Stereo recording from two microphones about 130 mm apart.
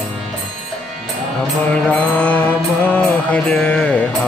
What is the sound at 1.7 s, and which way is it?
Mantra, 10° left (ahead or behind).